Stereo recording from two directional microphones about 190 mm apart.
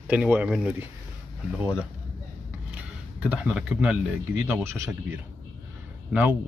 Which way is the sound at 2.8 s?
5° right (ahead or behind).